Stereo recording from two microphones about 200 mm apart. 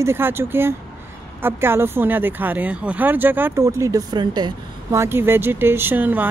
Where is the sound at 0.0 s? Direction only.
10° right (ahead or behind).